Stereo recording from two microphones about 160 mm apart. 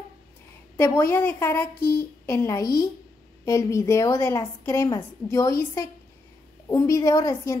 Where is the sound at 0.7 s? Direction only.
15° left (ahead or behind).